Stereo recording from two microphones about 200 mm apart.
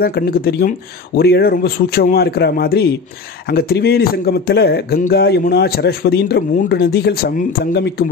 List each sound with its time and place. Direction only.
0.0 s speech: 50° left (ahead or behind)